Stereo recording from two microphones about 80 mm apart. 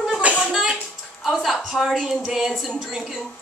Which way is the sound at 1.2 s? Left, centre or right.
Centre.